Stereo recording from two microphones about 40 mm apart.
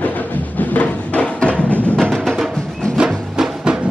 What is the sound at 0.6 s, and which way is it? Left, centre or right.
Music, left.